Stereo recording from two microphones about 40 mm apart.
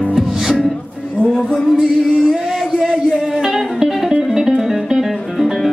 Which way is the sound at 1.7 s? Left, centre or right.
Centre.